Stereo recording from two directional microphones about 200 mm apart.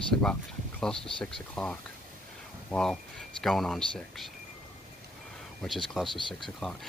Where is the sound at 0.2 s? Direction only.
5° left (ahead or behind).